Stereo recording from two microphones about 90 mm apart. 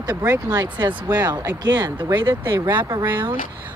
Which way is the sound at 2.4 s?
25° right (ahead or behind).